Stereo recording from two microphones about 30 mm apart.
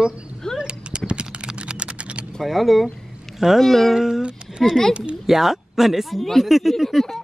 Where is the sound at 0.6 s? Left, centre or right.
Right.